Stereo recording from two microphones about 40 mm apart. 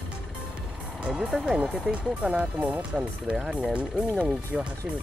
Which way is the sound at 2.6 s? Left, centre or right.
Right.